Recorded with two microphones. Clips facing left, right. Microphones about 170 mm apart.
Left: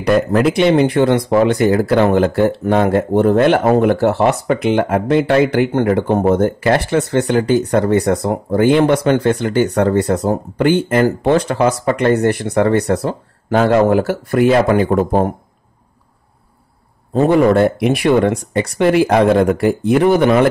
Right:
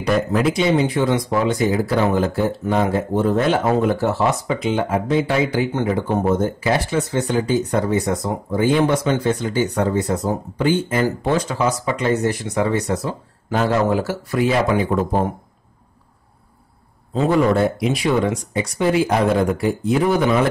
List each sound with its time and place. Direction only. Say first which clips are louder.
0.0 s a man's voice: left 5 dB; 65° left (ahead or behind); by 15.3 s 50° left (ahead or behind)
17.1 s speech: left 5 dB; 55° left (ahead or behind)